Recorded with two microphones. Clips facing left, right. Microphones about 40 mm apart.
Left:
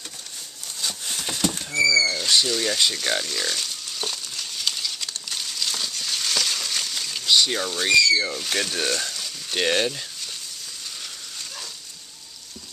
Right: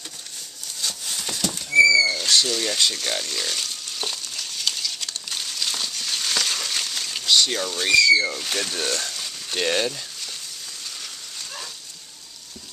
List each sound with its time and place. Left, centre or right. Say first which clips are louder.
0.7 s a sound: even; centre
2.2 s frying: even; centre
5.3 s crushing: even; centre
7.3 s speech: even; centre